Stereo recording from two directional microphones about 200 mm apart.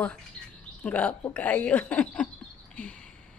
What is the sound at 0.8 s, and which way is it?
A woman's voice, 5° left (ahead or behind).